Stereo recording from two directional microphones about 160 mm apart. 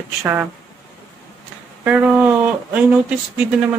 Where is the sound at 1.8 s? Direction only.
10° right (ahead or behind).